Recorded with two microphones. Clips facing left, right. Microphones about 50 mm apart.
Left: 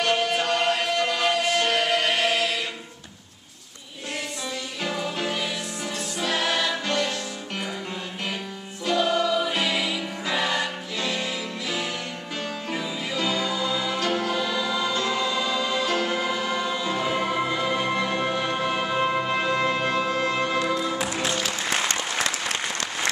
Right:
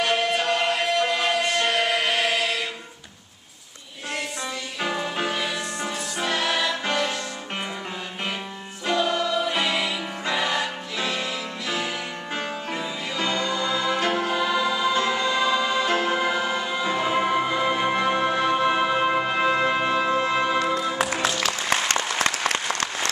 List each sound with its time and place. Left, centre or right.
0.0 s music: centre
4.8 s music: right
6.2 s music: centre
8.9 s choir: centre
9.5 s music: centre
12.7 s music: centre
13.9 s music: right
15.8 s music: right
17.8 s music: right
21.0 s music: right
21.4 s applause: right